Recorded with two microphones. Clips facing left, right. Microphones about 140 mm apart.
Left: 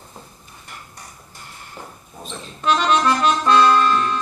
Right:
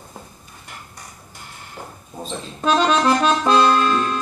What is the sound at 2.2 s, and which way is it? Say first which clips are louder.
Accordion: right 4 dB; 35° right (ahead or behind).